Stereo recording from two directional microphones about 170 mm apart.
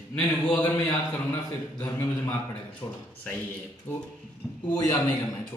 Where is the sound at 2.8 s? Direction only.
25° left (ahead or behind).